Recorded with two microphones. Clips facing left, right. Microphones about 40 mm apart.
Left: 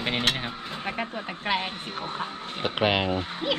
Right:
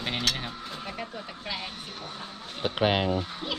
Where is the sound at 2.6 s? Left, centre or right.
Left.